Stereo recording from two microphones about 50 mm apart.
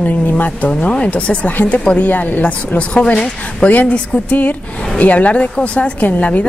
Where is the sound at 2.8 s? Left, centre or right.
Left.